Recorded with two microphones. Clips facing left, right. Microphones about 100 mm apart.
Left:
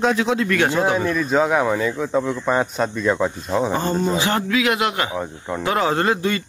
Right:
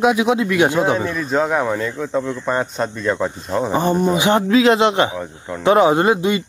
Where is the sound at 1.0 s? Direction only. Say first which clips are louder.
Left 1 dB; centre (ahead or behind).